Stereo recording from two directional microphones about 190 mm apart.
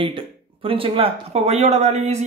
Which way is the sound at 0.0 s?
30° right (ahead or behind).